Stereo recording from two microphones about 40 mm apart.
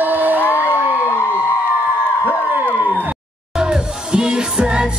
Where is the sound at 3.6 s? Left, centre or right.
Right.